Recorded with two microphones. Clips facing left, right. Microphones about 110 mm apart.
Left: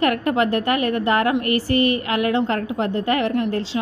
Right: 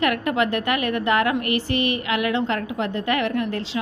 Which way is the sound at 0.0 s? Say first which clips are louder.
Left 2 dB; 35° left (ahead or behind).